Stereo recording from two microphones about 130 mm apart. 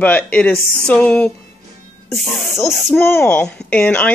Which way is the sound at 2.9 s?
20° left (ahead or behind).